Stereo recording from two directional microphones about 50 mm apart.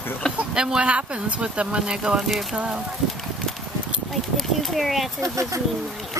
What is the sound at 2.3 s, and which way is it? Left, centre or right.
Speech, centre.